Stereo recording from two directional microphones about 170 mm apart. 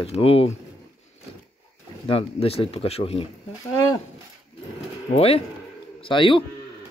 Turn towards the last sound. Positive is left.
turn(degrees=30)  # may be behind; listen again after turning